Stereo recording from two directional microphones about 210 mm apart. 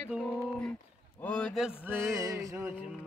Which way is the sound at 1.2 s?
5° left (ahead or behind).